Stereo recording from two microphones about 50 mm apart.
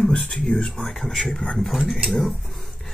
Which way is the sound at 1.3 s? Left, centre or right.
Centre.